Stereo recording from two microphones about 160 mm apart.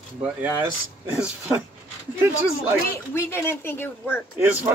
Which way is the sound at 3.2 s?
15° left (ahead or behind).